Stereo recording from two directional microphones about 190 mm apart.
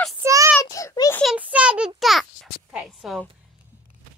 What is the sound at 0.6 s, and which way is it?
Speech, 15° left (ahead or behind).